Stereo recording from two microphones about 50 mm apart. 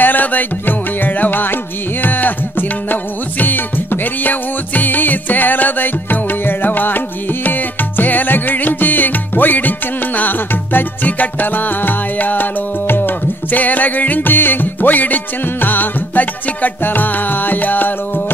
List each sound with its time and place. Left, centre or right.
0.0 s music: left